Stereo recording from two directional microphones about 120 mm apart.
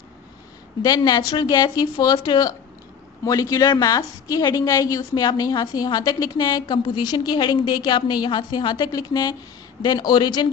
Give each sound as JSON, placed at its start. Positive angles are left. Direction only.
{"t": 0.8, "sound": "a woman's voice", "side_deg": 35}